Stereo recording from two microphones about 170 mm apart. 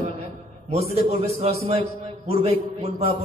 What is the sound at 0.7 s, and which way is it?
A man's voice, 35° right (ahead or behind).